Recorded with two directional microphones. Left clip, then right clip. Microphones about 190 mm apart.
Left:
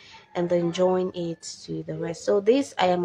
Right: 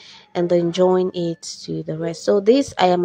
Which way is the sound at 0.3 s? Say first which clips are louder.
Right 6 dB; 25° right (ahead or behind).